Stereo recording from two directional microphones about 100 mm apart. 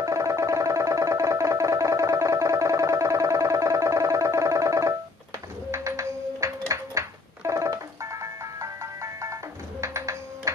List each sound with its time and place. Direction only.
0.0 s music: 30° right (ahead or behind)